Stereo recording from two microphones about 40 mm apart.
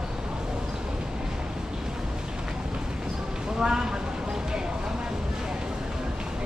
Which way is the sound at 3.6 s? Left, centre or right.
Centre.